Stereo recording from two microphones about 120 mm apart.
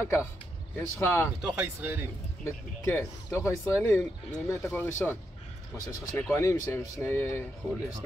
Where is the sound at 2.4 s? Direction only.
20° left (ahead or behind).